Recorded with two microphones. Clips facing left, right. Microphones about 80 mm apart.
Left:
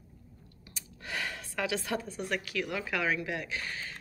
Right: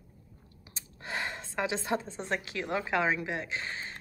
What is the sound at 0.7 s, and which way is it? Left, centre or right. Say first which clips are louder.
A woman's voice: right 2 dB; right.